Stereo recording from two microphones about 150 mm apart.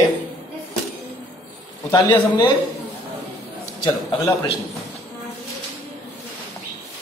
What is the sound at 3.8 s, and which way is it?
Speech, 30° left (ahead or behind).